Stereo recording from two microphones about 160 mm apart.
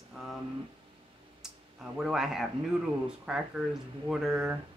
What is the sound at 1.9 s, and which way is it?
A woman's voice, 5° right (ahead or behind).